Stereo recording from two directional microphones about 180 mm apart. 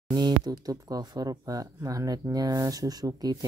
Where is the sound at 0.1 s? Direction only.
25° right (ahead or behind).